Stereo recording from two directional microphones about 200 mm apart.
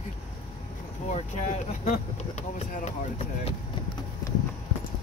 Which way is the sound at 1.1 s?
35° left (ahead or behind).